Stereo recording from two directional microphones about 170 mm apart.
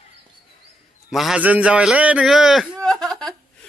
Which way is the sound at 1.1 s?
5° right (ahead or behind).